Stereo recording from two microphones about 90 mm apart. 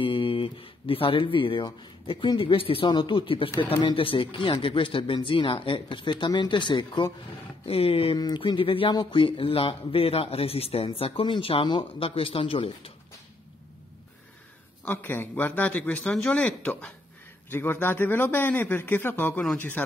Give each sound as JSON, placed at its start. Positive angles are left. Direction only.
{"t": 0.0, "sound": "speech", "side_deg": 80}
{"t": 2.9, "sound": "speech", "side_deg": 75}
{"t": 7.6, "sound": "a man's voice", "side_deg": 90}
{"t": 8.5, "sound": "a man's voice", "side_deg": 80}
{"t": 14.9, "sound": "a man's voice", "side_deg": 25}